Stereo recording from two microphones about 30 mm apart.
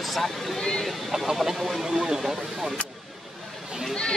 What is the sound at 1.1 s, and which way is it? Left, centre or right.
Speech, centre.